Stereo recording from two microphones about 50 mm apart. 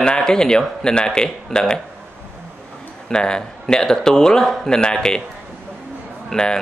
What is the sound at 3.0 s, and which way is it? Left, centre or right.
Speech, centre.